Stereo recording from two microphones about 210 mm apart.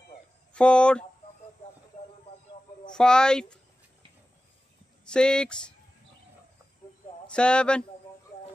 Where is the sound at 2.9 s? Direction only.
5° left (ahead or behind).